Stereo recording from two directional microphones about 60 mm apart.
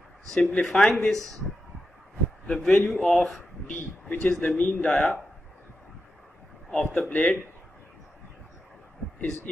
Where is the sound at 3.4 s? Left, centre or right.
Left.